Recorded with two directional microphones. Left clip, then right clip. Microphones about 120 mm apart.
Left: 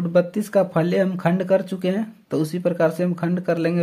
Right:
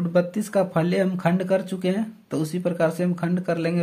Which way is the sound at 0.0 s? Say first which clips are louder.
Left 3 dB; 20° left (ahead or behind).